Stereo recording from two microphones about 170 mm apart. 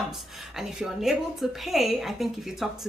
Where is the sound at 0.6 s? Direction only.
Centre (ahead or behind).